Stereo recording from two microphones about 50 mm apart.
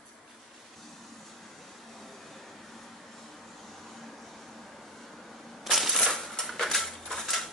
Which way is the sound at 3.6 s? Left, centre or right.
Centre.